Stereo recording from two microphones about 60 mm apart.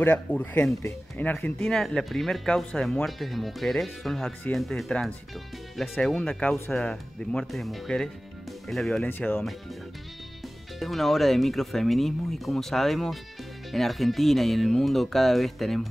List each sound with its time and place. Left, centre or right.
0.1 s speech: left
1.6 s speech: centre
6.1 s speech: left
7.5 s speech: centre
9.0 s speech: left
10.8 s speech: centre